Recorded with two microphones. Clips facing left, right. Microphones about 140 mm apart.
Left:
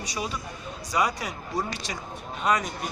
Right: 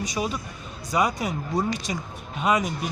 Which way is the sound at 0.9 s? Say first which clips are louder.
Right 3 dB; 20° right (ahead or behind).